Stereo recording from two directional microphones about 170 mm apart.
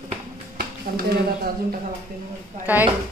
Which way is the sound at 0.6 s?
60° right (ahead or behind).